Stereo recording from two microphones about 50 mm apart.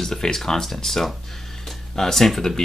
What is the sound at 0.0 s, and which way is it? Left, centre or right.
Speech, centre.